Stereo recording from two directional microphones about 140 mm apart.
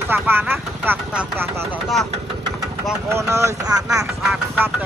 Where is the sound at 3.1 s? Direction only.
20° right (ahead or behind).